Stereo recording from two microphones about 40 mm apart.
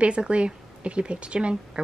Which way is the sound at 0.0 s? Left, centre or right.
Right.